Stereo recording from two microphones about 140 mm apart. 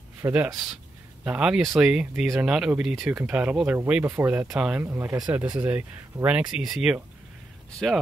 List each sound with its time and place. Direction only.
0.2 s speech: 10° right (ahead or behind)